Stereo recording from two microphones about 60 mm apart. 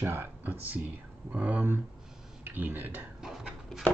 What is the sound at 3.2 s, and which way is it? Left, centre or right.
Dog, centre.